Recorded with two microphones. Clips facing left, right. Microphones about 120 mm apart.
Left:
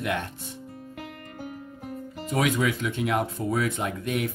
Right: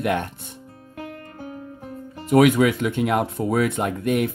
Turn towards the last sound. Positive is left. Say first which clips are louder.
# right 6 dB
turn(degrees=-55)  # may be behind; listen again after turning